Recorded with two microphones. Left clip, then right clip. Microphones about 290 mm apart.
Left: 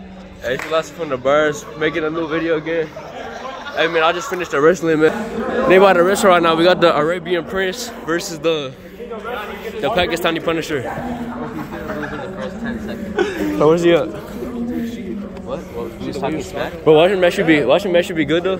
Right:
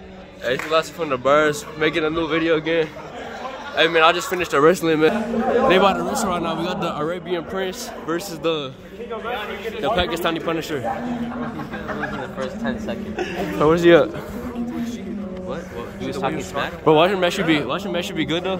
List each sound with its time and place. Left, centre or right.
0.5 s speech: centre
9.8 s speech: centre
13.6 s speech: centre
16.1 s speech: centre